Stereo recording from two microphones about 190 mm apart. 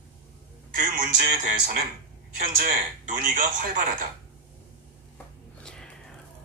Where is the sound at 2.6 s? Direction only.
45° right (ahead or behind).